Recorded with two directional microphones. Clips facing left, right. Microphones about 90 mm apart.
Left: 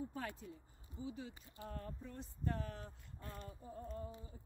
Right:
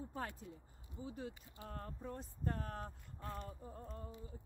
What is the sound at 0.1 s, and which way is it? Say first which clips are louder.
A woman's voice: right 1 dB; 35° right (ahead or behind).